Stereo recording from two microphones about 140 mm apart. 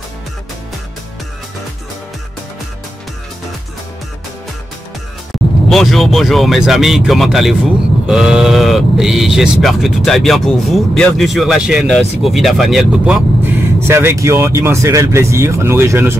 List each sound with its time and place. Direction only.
5.7 s speech: centre (ahead or behind)
13.8 s speech: 20° right (ahead or behind)